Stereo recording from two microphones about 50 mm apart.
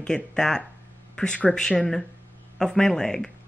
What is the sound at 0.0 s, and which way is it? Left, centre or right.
Speech, centre.